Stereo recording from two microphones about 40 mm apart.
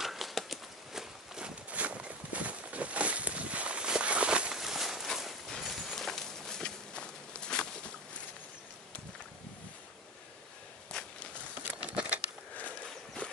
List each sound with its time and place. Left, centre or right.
0.0 s a sound: centre
0.9 s walk: centre
1.7 s walk: right
4.6 s a sound: centre
5.6 s clip-clop: centre
5.9 s clip-clop: centre
6.9 s walk: left
10.9 s walk: centre
11.9 s a sound: right